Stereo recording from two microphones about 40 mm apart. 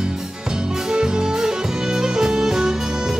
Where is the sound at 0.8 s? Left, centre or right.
Right.